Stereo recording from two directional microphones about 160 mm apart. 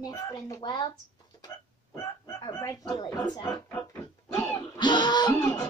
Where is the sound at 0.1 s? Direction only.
20° left (ahead or behind).